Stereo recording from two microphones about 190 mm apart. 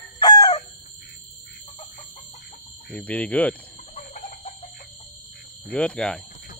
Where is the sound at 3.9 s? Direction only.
35° left (ahead or behind).